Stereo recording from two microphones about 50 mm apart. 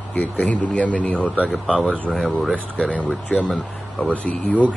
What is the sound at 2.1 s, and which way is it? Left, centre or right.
Speech, centre.